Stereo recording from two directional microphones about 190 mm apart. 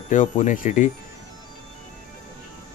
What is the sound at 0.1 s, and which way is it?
Speech, 40° left (ahead or behind).